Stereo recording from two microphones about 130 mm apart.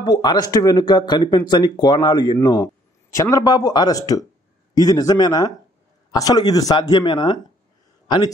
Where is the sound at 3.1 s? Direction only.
25° left (ahead or behind).